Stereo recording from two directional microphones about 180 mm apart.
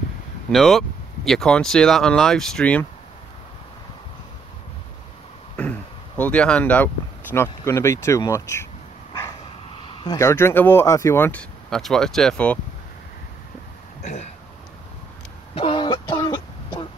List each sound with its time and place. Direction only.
0.5 s speech: centre (ahead or behind)
5.6 s a sound: 10° left (ahead or behind)
7.3 s speech: 15° left (ahead or behind)
9.8 s speech: 20° left (ahead or behind)
11.7 s speech: centre (ahead or behind)
15.5 s throat clearing: 30° left (ahead or behind)